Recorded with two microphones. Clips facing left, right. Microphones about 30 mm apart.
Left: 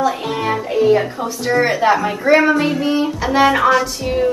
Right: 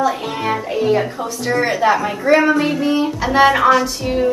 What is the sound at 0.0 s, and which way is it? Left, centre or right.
Speech, centre.